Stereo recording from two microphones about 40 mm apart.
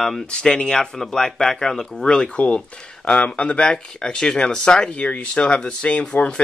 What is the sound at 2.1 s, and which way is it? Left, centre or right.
Speech, left.